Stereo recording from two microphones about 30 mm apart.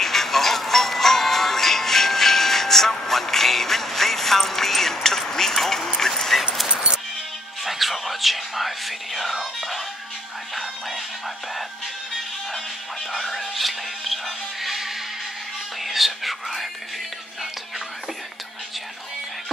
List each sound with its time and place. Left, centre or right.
0.0 s jingle bell: centre
4.5 s a sound: centre
6.7 s music: right
7.6 s whispering: centre
9.3 s music: centre
13.1 s a sound: centre
15.8 s whispering: centre